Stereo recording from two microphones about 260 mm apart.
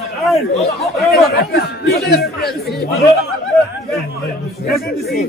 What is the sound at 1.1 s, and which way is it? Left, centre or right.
Speech, left.